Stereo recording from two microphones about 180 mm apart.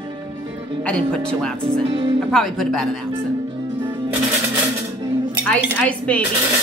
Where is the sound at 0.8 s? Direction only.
5° left (ahead or behind).